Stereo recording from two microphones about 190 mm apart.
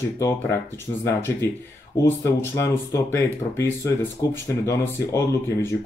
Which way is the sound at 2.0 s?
10° left (ahead or behind).